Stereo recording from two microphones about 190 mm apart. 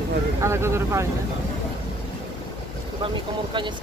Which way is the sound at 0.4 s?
15° right (ahead or behind).